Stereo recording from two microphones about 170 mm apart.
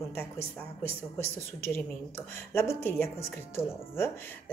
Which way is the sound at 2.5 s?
15° left (ahead or behind).